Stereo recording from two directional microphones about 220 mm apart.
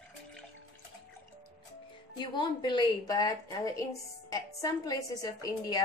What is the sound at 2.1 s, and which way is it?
A woman's voice, 20° left (ahead or behind).